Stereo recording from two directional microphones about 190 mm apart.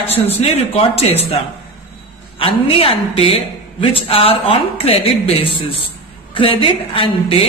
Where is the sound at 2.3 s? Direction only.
30° left (ahead or behind).